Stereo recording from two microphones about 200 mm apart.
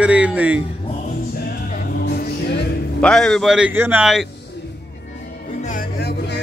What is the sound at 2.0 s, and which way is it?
Music, 50° left (ahead or behind).